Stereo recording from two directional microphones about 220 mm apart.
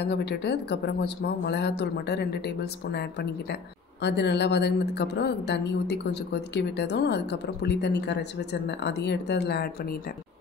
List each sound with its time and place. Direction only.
0.0 s a woman's voice: 50° left (ahead or behind)